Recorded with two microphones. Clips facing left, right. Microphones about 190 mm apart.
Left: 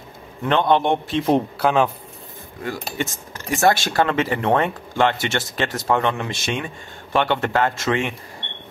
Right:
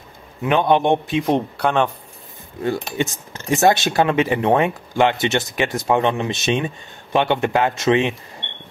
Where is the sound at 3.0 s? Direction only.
20° right (ahead or behind).